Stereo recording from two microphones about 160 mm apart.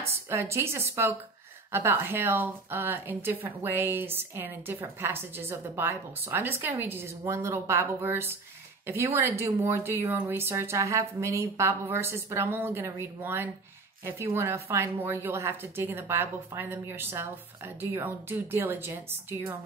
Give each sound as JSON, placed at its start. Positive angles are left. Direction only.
{"t": 0.3, "sound": "a woman's voice", "side_deg": -15}